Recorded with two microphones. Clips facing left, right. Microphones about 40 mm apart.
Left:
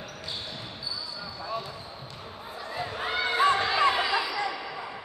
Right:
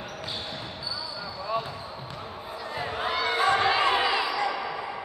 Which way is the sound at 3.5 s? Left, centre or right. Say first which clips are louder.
Right 1 dB; centre.